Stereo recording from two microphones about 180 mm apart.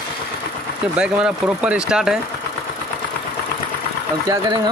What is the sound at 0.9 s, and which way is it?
Speech, 5° right (ahead or behind).